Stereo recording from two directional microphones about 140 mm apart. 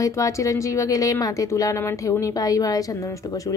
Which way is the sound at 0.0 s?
25° left (ahead or behind).